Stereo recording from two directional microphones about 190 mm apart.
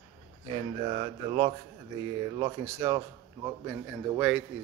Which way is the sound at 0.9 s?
25° right (ahead or behind).